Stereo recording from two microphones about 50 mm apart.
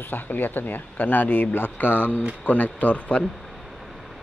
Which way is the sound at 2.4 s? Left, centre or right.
Left.